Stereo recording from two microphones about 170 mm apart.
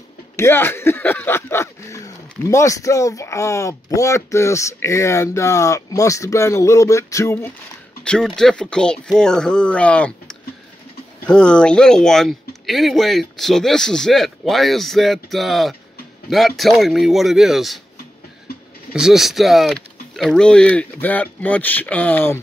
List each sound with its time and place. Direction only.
0.4 s speech: 15° left (ahead or behind)
8.0 s speech: 5° left (ahead or behind)
18.9 s speech: 5° right (ahead or behind)